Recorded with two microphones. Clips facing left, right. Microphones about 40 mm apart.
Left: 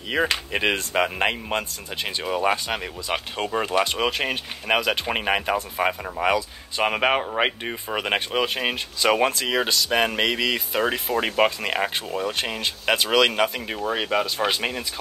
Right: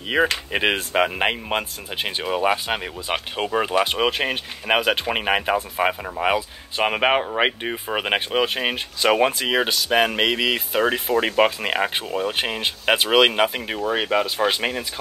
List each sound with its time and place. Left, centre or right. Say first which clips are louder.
0.1 s speech: right 3 dB; right